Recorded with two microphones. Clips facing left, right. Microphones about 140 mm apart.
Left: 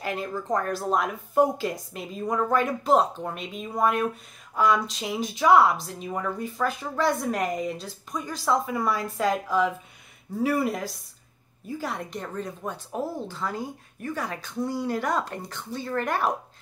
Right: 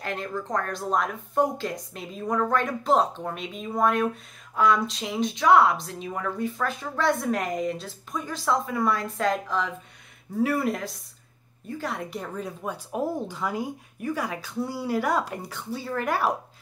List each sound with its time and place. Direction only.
0.0 s speech: 5° left (ahead or behind)